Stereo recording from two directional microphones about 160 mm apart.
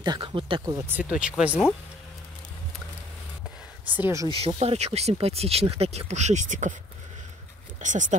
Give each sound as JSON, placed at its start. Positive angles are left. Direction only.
{"t": 0.0, "sound": "speech", "side_deg": -30}
{"t": 0.7, "sound": "speech", "side_deg": -10}
{"t": 3.9, "sound": "speech", "side_deg": -15}
{"t": 4.3, "sound": "speech", "side_deg": -35}
{"t": 7.8, "sound": "speech", "side_deg": -50}